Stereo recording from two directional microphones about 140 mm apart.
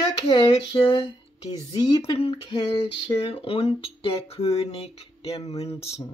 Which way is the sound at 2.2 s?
40° left (ahead or behind).